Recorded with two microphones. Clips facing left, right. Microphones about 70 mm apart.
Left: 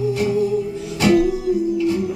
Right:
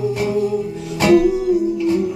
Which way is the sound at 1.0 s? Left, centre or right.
Right.